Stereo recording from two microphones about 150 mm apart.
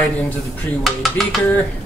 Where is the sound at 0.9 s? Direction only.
Centre (ahead or behind).